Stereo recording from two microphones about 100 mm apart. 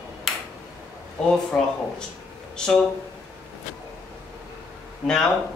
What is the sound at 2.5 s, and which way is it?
Speech, 5° left (ahead or behind).